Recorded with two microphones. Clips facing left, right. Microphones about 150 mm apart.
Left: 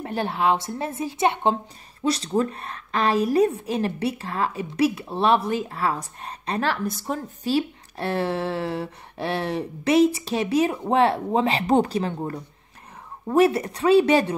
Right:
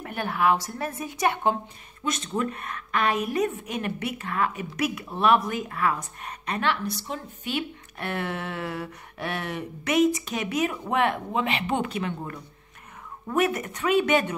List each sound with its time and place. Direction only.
0.0 s a woman's voice: 30° left (ahead or behind)